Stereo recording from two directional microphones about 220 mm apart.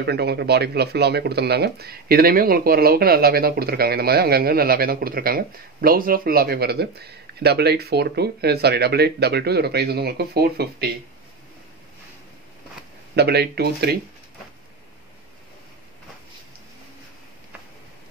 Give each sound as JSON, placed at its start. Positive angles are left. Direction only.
{"t": 0.0, "sound": "speech", "side_deg": -50}
{"t": 13.1, "sound": "speech", "side_deg": -50}